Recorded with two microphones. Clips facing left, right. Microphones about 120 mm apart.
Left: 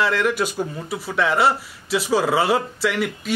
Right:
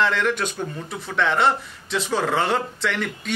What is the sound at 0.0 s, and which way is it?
Speech, 5° left (ahead or behind).